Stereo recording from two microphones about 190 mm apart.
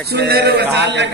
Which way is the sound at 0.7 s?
65° right (ahead or behind).